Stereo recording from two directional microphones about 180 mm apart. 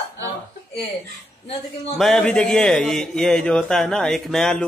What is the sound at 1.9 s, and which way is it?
A man's voice, 5° left (ahead or behind).